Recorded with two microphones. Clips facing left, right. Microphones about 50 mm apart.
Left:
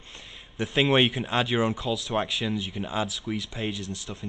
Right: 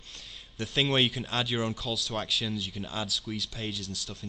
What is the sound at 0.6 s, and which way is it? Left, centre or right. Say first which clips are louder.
A man's voice: left 5 dB; left.